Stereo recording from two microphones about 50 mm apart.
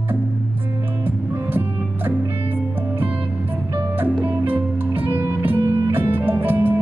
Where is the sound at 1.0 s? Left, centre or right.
Right.